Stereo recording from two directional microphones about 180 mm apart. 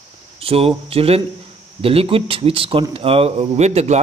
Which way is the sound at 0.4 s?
30° right (ahead or behind).